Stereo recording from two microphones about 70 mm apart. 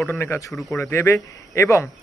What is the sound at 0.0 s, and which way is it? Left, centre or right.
Speech, left.